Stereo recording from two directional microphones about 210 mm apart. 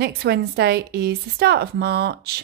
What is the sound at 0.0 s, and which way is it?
A woman's voice, 50° right (ahead or behind).